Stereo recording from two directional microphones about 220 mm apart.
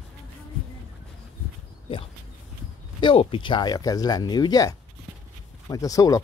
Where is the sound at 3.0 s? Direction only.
20° left (ahead or behind).